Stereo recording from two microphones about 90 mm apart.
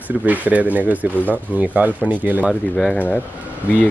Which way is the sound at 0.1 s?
10° right (ahead or behind).